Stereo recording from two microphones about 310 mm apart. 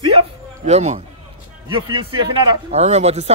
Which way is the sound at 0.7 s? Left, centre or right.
Right.